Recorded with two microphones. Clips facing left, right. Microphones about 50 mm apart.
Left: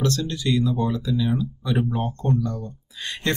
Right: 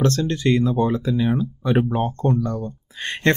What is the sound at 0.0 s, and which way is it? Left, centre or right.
Speech, right.